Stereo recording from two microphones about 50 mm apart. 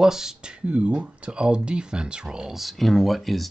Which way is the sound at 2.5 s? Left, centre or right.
Centre.